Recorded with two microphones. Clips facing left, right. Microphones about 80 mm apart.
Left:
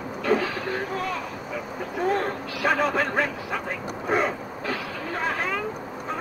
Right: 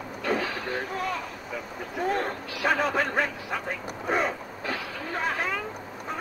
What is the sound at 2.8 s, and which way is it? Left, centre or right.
Speech, centre.